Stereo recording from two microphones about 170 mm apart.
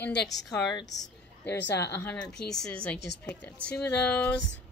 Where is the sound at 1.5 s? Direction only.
90° left.